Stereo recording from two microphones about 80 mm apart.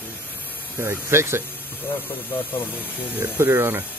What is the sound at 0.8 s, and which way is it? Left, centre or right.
Speech, right.